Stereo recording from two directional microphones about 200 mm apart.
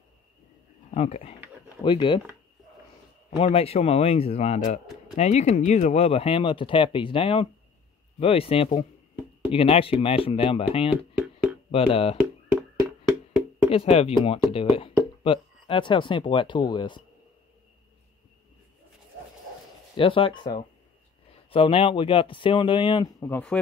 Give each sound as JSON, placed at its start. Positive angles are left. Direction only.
{"t": 0.9, "sound": "a man's voice", "side_deg": 30}
{"t": 3.3, "sound": "a man's voice", "side_deg": 30}
{"t": 10.9, "sound": "a sound", "side_deg": -5}
{"t": 11.7, "sound": "speech", "side_deg": 30}
{"t": 13.7, "sound": "speech", "side_deg": 30}
{"t": 20.0, "sound": "speech", "side_deg": 25}
{"t": 23.2, "sound": "speech", "side_deg": 10}